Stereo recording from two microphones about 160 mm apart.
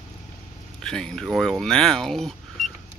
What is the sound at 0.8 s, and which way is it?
Speech, 5° left (ahead or behind).